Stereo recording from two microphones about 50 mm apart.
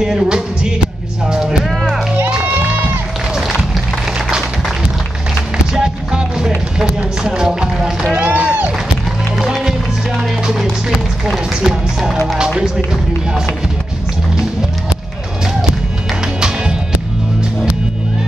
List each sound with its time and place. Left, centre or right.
0.0 s music: centre
2.4 s music: right
3.3 s music: centre
5.7 s music: centre
6.8 s run: centre
7.6 s music: centre
8.1 s run: right
9.4 s music: centre
11.2 s speech: centre
16.3 s music: centre